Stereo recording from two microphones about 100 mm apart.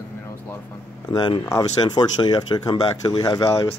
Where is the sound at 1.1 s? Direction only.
50° left (ahead or behind).